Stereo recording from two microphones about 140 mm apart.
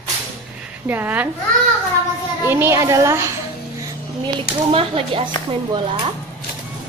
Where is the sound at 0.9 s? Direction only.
15° right (ahead or behind).